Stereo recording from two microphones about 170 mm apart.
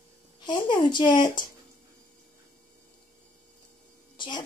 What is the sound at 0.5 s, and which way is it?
Speech, 25° left (ahead or behind).